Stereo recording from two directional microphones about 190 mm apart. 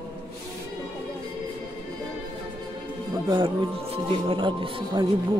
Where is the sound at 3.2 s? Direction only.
25° right (ahead or behind).